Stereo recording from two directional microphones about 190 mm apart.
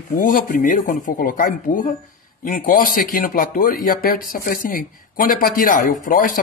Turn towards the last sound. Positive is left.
turn(degrees=45)  # may be behind; listen again after turning